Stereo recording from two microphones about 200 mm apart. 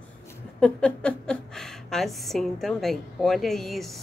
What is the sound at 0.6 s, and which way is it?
A woman's voice, 5° left (ahead or behind).